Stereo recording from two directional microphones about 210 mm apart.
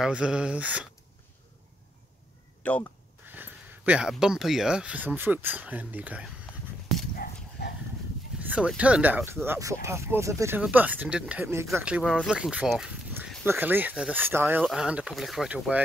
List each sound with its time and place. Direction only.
0.0 s speech: 5° right (ahead or behind)
2.6 s speech: 5° left (ahead or behind)
3.3 s speech: 10° right (ahead or behind)
7.6 s dog: 50° left (ahead or behind)
8.4 s speech: 5° right (ahead or behind)